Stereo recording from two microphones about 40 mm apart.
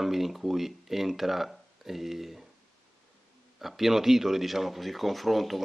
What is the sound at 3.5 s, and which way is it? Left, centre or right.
Speech, centre.